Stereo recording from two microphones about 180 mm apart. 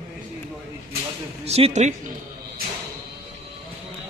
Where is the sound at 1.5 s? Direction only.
35° right (ahead or behind).